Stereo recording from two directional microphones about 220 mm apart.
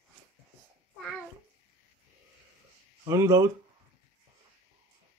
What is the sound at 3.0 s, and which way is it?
Speech, 15° right (ahead or behind).